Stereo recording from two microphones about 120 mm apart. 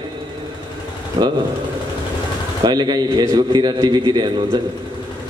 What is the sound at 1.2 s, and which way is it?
Speech, 35° right (ahead or behind).